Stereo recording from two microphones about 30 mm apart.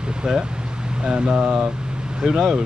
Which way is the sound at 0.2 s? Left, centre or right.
Centre.